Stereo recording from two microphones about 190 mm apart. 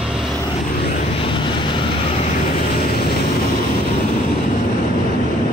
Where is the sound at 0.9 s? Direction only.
35° left (ahead or behind).